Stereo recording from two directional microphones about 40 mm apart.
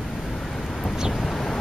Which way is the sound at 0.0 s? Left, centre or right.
Centre.